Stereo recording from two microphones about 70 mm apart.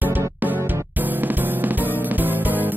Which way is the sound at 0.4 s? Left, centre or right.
Right.